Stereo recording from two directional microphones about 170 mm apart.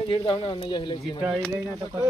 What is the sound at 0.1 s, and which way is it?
Speech, 30° left (ahead or behind).